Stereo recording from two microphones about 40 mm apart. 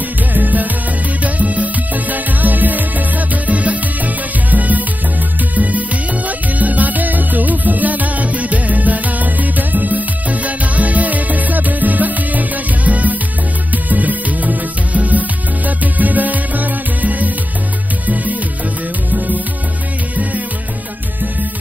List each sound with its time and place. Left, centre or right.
0.3 s music: right